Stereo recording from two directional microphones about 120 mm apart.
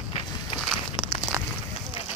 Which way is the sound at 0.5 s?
Centre (ahead or behind).